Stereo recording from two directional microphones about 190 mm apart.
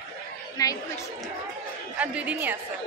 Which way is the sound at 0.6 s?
20° left (ahead or behind).